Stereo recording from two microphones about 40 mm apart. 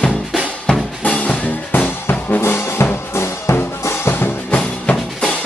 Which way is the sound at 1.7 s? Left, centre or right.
Left.